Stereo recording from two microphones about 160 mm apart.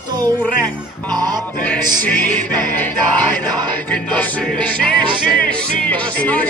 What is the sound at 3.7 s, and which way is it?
Music, 10° left (ahead or behind).